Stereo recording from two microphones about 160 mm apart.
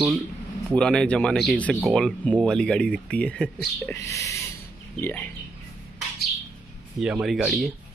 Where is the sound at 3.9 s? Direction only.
20° left (ahead or behind).